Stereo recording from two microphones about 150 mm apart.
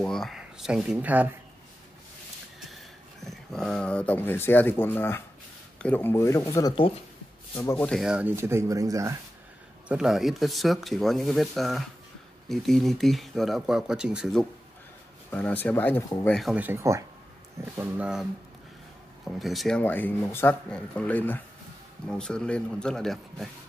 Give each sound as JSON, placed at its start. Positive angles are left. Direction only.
{"t": 0.0, "sound": "speech", "side_deg": 0}
{"t": 3.3, "sound": "speech", "side_deg": 5}
{"t": 8.0, "sound": "speech", "side_deg": -10}
{"t": 9.8, "sound": "speech", "side_deg": -5}
{"t": 15.3, "sound": "speech", "side_deg": 10}
{"t": 16.3, "sound": "speech", "side_deg": 0}
{"t": 16.5, "sound": "speech", "side_deg": -15}
{"t": 17.7, "sound": "speech", "side_deg": -10}
{"t": 19.2, "sound": "speech", "side_deg": 0}
{"t": 19.8, "sound": "speech", "side_deg": 15}